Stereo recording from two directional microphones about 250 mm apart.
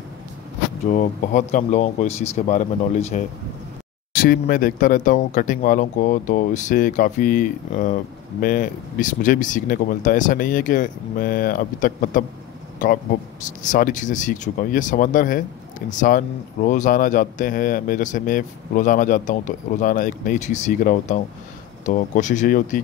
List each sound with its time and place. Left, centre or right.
0.9 s speech: left